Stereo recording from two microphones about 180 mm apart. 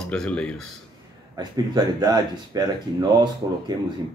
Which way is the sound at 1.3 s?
20° right (ahead or behind).